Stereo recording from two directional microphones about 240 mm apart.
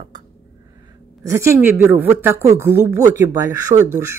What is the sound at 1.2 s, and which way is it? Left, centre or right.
Speech, centre.